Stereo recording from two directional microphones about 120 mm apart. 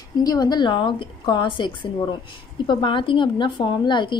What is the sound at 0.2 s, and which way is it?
A woman's voice, 35° left (ahead or behind).